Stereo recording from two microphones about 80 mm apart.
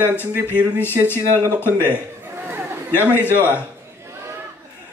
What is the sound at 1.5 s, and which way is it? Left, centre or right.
Speech, left.